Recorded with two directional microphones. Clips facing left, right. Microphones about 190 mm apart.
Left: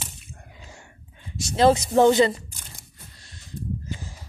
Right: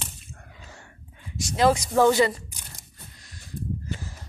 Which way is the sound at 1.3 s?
30° left (ahead or behind).